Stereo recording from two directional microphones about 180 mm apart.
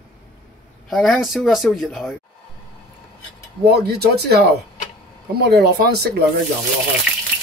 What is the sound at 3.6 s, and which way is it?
Speech, 65° right (ahead or behind).